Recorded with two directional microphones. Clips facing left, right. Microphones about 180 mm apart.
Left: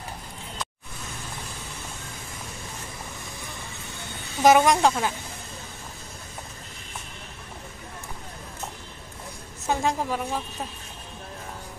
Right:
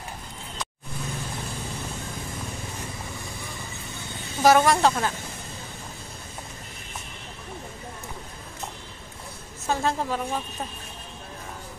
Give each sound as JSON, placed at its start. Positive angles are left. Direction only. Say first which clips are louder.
{"t": 4.4, "sound": "a woman's voice", "louder": "left 1 dB", "side_deg": 15}
{"t": 9.7, "sound": "a woman's voice", "louder": "even", "side_deg": 15}